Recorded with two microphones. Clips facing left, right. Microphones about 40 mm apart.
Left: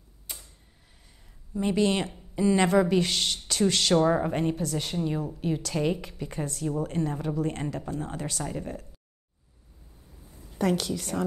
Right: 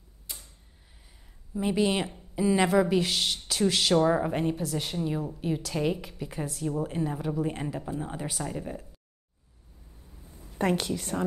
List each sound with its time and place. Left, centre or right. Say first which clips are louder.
1.5 s a woman's voice: left 1 dB; centre
10.6 s a woman's voice: left 1 dB; centre